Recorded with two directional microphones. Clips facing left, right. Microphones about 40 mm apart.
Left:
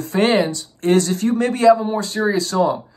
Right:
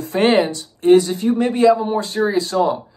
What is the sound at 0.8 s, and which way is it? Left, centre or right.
A man's voice, centre.